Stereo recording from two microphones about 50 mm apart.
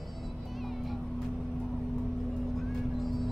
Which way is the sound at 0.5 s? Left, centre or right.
Centre.